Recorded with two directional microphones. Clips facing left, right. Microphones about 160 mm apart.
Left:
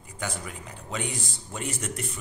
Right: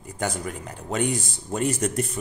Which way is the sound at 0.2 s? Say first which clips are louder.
Right 6 dB; 45° right (ahead or behind).